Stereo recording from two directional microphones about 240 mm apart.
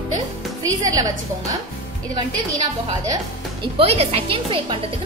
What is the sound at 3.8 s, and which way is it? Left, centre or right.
Speech, right.